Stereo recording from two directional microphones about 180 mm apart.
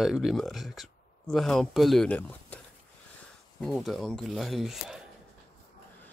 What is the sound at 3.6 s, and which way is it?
Speech, centre (ahead or behind).